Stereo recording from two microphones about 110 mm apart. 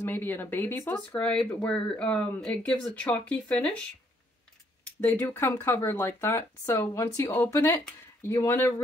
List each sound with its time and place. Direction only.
0.0 s speech: 20° left (ahead or behind)
5.0 s speech: 15° left (ahead or behind)